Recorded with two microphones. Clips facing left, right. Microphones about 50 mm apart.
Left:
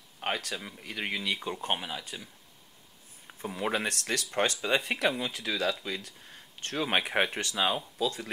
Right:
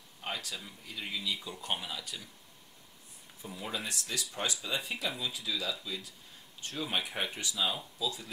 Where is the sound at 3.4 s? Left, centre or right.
Left.